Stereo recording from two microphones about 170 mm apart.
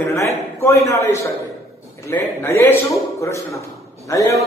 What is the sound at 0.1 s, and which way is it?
A man's voice, 15° left (ahead or behind).